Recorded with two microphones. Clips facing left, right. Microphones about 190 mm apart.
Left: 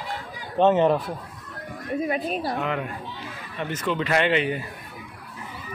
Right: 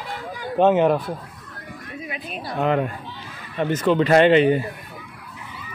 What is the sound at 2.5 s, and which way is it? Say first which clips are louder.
Speech: right 6 dB; 35° right (ahead or behind).